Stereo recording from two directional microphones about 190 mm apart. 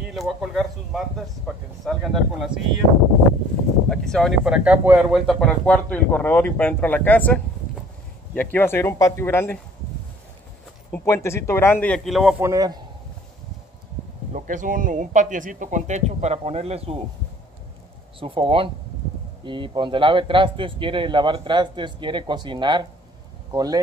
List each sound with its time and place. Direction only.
0.1 s speech: centre (ahead or behind)
3.9 s a man's voice: 5° left (ahead or behind)
10.9 s a man's voice: 15° left (ahead or behind)
12.4 s a man's voice: 15° right (ahead or behind)
14.3 s speech: 45° right (ahead or behind)
18.2 s a man's voice: 30° right (ahead or behind)